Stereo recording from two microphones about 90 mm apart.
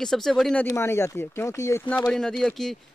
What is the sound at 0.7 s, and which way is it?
Speech, 30° left (ahead or behind).